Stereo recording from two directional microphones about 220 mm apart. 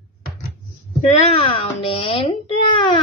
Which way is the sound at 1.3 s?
25° left (ahead or behind).